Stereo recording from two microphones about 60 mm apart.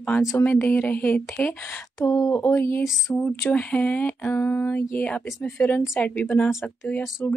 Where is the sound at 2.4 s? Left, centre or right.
Left.